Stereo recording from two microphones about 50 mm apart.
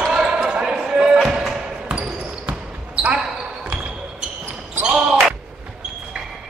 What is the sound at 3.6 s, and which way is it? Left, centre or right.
Basketball bounce, right.